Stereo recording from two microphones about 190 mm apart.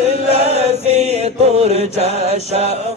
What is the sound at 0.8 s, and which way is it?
Mantra, 35° right (ahead or behind).